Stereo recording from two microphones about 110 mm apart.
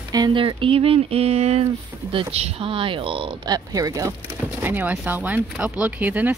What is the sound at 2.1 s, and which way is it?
Speech, 60° right (ahead or behind).